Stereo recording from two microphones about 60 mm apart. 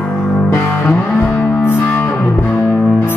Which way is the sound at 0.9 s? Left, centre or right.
Left.